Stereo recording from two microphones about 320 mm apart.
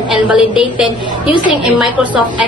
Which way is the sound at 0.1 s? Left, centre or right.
Centre.